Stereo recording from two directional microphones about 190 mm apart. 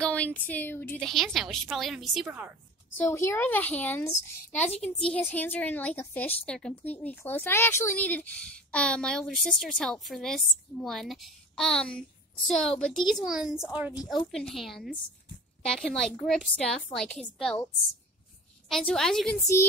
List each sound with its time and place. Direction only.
0.0 s a woman's voice: 5° left (ahead or behind)
3.1 s speech: 15° left (ahead or behind)
4.5 s a child's voice: 35° left (ahead or behind)
5.0 s a woman's voice: 5° left (ahead or behind)
18.7 s a woman's voice: centre (ahead or behind)